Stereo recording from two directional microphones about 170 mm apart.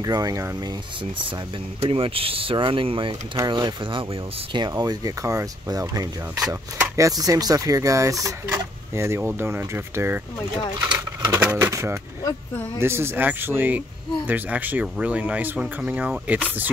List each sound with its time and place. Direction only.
0.0 s speech: 20° right (ahead or behind)
1.8 s speech: 30° right (ahead or behind); by 10.2 s 15° right (ahead or behind)
10.9 s speech: 25° right (ahead or behind)
11.3 s speech: 10° right (ahead or behind)
12.2 s a sound: 20° left (ahead or behind)
12.7 s speech: 15° right (ahead or behind)